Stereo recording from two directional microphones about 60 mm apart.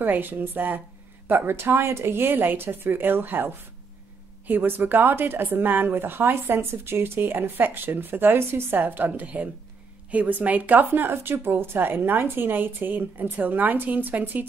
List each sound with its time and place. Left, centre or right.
0.0 s speech: right